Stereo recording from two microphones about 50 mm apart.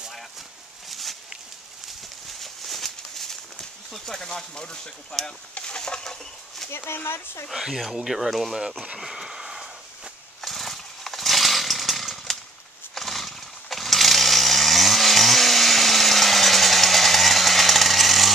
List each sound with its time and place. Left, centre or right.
0.8 s a sound: centre
2.4 s a sound: centre
3.9 s speech: centre
5.5 s chicken: centre
6.8 s speech: left
7.5 s speech: centre
10.4 s chainsaw: centre